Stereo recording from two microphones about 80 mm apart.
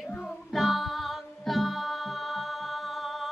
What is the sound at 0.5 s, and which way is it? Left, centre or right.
Music, centre.